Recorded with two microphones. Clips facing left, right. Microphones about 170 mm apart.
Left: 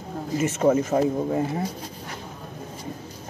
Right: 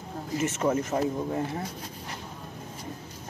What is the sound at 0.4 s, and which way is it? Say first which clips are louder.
Speech: left 6 dB; 20° left (ahead or behind).